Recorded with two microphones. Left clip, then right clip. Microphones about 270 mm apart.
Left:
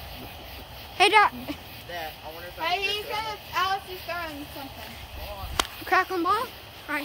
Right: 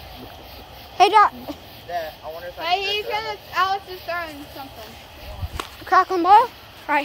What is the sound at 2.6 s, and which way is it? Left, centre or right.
Speech, centre.